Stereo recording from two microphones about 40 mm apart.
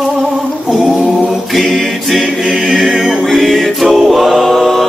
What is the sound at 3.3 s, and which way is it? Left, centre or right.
Music, centre.